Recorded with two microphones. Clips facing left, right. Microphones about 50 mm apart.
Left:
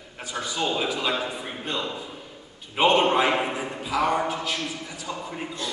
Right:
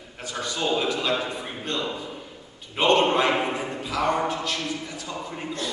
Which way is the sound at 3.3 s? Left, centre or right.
Centre.